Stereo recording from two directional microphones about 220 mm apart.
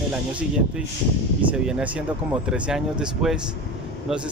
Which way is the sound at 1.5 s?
5° right (ahead or behind).